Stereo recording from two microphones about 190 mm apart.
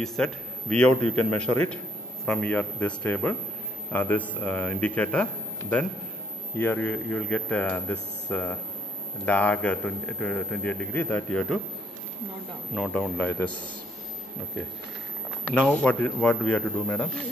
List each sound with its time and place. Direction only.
0.0 s a man's voice: centre (ahead or behind)
12.7 s a man's voice: 5° left (ahead or behind)
15.5 s a man's voice: 5° left (ahead or behind)